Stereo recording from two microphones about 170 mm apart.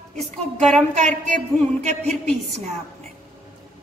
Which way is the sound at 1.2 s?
45° right (ahead or behind).